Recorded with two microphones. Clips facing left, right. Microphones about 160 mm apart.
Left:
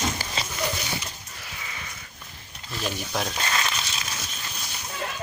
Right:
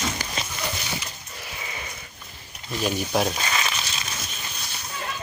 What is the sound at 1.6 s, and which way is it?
Sheep, 20° right (ahead or behind).